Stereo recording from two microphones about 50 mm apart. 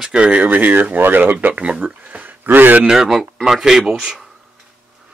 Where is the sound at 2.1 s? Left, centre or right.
Right.